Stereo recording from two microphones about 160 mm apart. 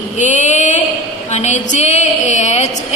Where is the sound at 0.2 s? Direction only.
50° left (ahead or behind).